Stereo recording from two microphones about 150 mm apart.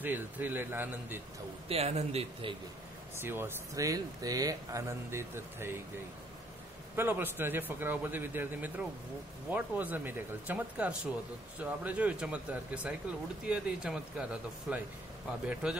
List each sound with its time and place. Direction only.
0.0 s speech: 15° right (ahead or behind)
1.7 s a man's voice: 45° right (ahead or behind)
3.2 s speech: 15° right (ahead or behind)
7.0 s speech: 15° right (ahead or behind)